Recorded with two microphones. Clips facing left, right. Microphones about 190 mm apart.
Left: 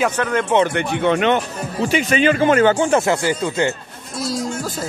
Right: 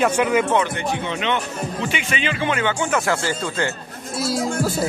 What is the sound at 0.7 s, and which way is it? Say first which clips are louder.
Speech: left 7 dB; 60° left (ahead or behind).